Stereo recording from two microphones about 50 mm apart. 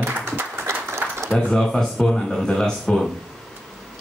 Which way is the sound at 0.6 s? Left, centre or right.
Right.